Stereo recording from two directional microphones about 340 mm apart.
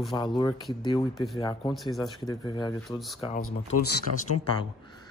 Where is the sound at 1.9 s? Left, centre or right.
Centre.